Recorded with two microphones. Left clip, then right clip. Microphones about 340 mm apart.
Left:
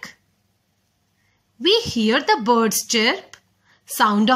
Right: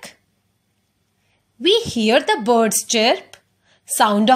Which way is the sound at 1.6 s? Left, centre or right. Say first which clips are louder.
Right 1 dB; centre.